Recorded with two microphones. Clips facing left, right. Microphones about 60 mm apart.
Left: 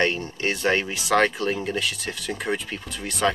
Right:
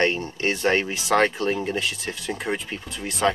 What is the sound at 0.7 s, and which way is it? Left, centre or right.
Speech, centre.